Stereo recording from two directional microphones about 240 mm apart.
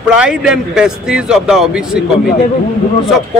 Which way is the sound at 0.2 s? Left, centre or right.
Centre.